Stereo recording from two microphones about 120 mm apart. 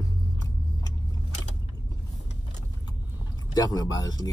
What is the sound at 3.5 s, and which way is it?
Speech, 30° left (ahead or behind).